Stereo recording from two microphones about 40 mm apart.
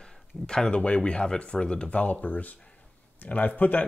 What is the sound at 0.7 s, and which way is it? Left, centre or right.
Speech, left.